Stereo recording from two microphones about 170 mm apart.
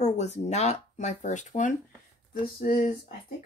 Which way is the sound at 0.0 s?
40° left (ahead or behind).